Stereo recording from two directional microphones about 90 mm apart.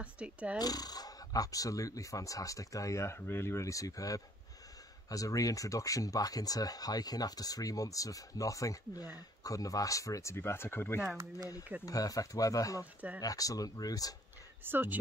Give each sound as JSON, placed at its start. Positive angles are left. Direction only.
{"t": 0.0, "sound": "speech", "side_deg": -15}
{"t": 0.6, "sound": "speech", "side_deg": 45}
{"t": 11.8, "sound": "speech", "side_deg": 45}
{"t": 14.6, "sound": "speech", "side_deg": -20}